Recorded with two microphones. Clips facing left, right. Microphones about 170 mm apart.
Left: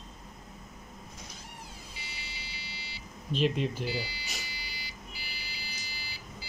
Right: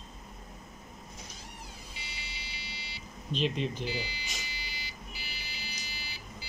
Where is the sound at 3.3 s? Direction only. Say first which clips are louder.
Left 3 dB; 5° left (ahead or behind).